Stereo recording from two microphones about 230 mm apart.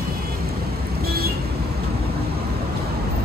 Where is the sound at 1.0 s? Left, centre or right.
Right.